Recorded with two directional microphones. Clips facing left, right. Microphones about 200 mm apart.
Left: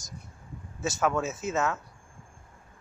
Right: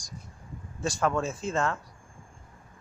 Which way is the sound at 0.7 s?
5° left (ahead or behind).